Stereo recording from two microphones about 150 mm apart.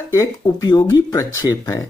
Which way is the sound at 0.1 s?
20° left (ahead or behind).